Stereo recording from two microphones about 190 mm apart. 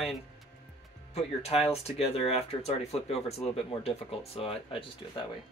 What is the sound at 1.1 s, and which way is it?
Speech, 30° left (ahead or behind).